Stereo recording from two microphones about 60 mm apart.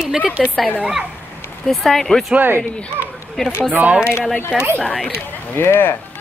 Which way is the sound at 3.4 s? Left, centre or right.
Centre.